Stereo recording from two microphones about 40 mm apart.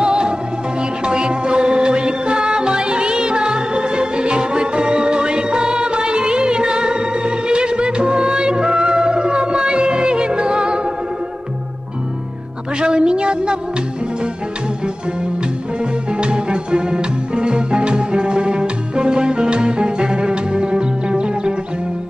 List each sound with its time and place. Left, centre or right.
0.0 s music: right
12.8 s a sound: right
15.8 s music: right